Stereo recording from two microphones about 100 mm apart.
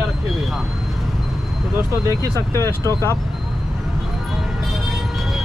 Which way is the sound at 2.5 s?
25° left (ahead or behind).